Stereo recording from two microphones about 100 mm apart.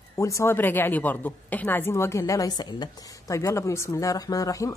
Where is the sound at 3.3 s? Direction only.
30° left (ahead or behind).